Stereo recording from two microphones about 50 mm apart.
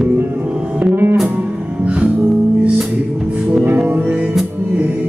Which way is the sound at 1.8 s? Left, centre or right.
Right.